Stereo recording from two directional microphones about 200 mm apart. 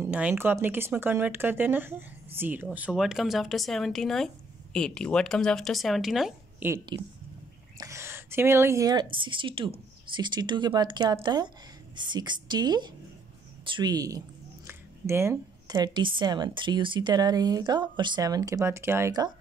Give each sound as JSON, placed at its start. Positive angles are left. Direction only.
{"t": 0.0, "sound": "speech", "side_deg": -5}
{"t": 6.9, "sound": "a woman's voice", "side_deg": -20}